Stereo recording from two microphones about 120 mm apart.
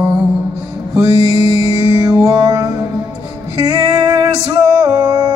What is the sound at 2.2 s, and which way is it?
Music, 30° right (ahead or behind).